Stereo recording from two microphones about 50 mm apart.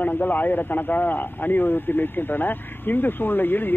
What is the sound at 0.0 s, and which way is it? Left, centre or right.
A man's voice, left.